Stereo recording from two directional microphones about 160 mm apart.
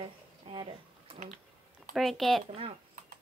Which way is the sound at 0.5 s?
30° right (ahead or behind).